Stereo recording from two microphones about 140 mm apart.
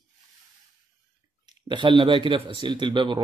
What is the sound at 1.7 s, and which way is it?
A man's voice, 35° right (ahead or behind).